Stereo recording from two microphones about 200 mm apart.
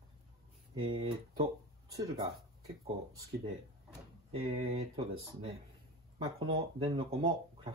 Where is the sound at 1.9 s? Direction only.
15° right (ahead or behind).